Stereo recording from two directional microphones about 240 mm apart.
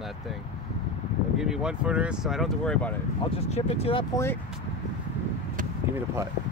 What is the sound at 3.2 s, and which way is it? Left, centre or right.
Speech, left.